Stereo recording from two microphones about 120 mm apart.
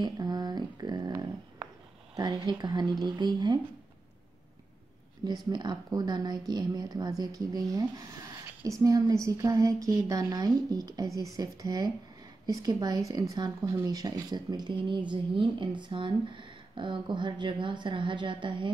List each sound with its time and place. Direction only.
0.0 s speech: 35° right (ahead or behind)
5.2 s speech: 35° right (ahead or behind)